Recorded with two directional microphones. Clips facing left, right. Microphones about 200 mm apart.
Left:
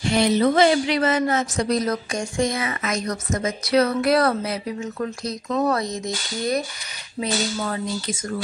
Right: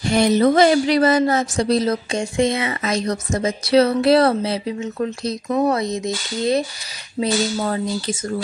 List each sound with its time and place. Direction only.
0.1 s a woman's voice: 45° right (ahead or behind); by 6.6 s 25° right (ahead or behind)
7.2 s speech: 35° right (ahead or behind)